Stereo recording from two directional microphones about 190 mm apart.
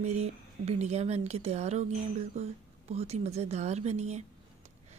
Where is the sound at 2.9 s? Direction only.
35° right (ahead or behind).